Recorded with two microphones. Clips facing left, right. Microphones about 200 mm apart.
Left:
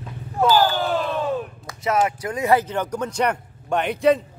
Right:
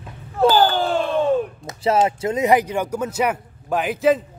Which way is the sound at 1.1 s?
25° right (ahead or behind).